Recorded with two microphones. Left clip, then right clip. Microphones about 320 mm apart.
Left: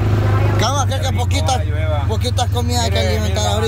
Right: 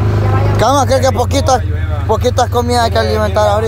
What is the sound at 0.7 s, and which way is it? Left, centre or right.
Speech, centre.